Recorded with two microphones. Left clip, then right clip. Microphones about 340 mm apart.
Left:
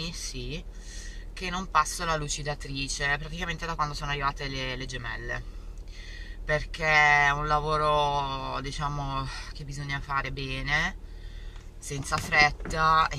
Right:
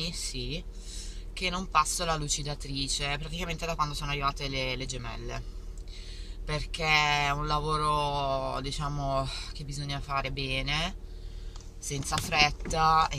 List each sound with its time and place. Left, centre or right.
0.0 s speech: centre
6.4 s speech: centre
11.9 s speech: centre